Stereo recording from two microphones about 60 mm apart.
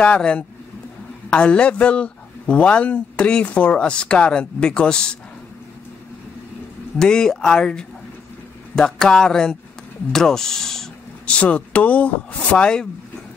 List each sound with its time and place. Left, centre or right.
0.0 s speech: centre
7.0 s a sound: centre
11.2 s speech: centre